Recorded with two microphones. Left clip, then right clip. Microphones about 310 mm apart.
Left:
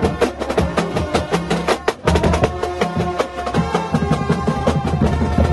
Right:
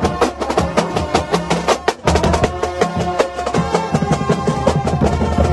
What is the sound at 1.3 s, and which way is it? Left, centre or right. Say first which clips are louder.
Music: right 3 dB; centre.